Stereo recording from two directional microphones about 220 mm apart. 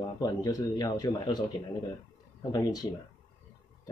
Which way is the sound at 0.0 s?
15° left (ahead or behind).